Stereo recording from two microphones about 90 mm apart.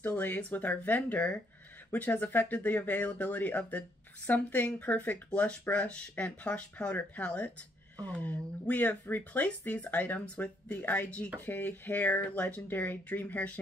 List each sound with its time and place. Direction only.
0.0 s speech: 20° left (ahead or behind)